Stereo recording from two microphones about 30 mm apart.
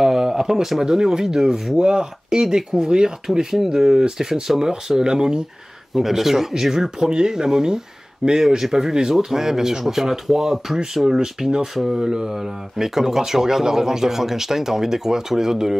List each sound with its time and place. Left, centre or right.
0.0 s speech: centre
3.5 s speech: centre
5.9 s speech: centre
7.1 s speech: right
11.6 s speech: centre
12.0 s speech: right
12.3 s speech: centre